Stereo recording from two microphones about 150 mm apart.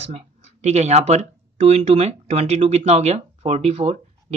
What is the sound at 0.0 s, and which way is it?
Speech, 45° right (ahead or behind).